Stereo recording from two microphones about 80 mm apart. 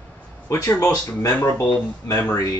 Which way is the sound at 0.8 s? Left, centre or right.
Left.